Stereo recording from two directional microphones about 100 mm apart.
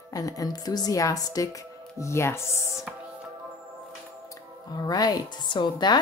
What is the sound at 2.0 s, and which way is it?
Speech, 25° left (ahead or behind).